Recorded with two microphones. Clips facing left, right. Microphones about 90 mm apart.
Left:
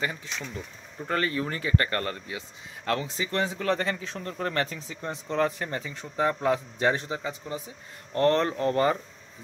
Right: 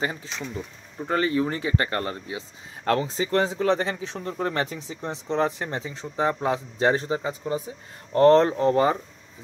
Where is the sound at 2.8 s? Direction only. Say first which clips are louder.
Right 5 dB; 35° right (ahead or behind).